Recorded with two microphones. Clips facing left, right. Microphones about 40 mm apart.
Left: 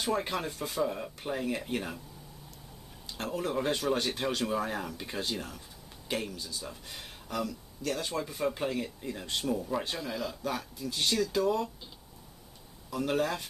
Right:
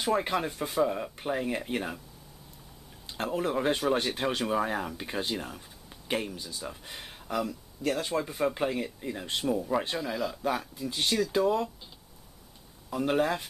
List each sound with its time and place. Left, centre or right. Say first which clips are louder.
0.0 s speech: right 4 dB; centre
3.1 s speech: right 3 dB; centre
12.9 s speech: right 3 dB; centre